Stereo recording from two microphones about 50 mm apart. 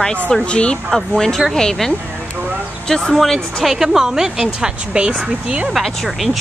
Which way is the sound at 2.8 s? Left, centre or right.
Centre.